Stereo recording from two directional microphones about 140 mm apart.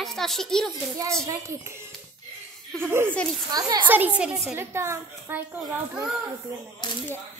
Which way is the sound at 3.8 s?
10° right (ahead or behind).